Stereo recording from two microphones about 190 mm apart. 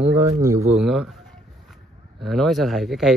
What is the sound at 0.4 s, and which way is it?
Speech, 20° right (ahead or behind).